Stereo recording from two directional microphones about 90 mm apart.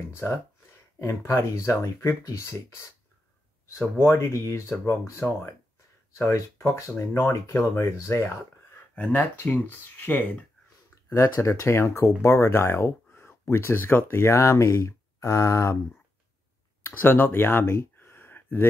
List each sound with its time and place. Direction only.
0.1 s speech: 25° left (ahead or behind)
4.0 s speech: 30° left (ahead or behind)
8.9 s speech: 20° left (ahead or behind)
11.3 s speech: 30° left (ahead or behind)
16.8 s a sound: 20° left (ahead or behind)